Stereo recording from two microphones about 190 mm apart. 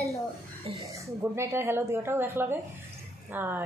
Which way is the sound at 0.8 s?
15° right (ahead or behind).